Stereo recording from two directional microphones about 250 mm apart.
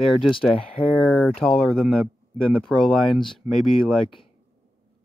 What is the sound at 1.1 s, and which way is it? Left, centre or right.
Speech, centre.